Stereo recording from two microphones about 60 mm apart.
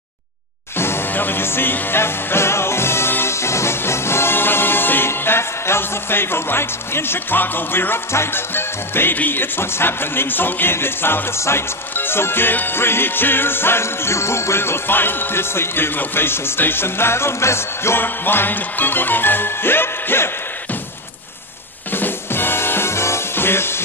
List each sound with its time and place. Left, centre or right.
0.7 s music: left
21.9 s music: left